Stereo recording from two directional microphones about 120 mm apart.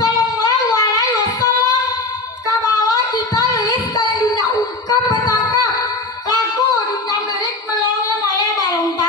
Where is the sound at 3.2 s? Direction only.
30° left (ahead or behind).